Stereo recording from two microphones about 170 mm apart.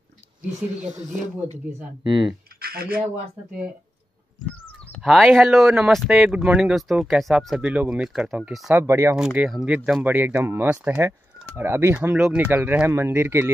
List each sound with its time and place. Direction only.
2.0 s speech: 30° right (ahead or behind)
2.6 s a sound: 60° right (ahead or behind)
5.0 s speech: centre (ahead or behind)
8.8 s speech: 15° right (ahead or behind)
9.1 s speech: 5° right (ahead or behind)